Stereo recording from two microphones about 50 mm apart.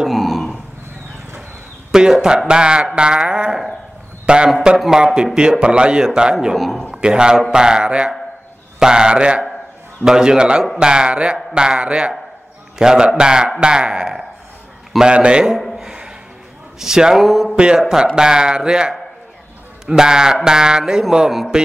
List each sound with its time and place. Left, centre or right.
0.0 s a sound: centre
1.9 s speech: centre
6.3 s a man's voice: centre
6.9 s a man's voice: centre
15.5 s a sound: centre
16.8 s speech: centre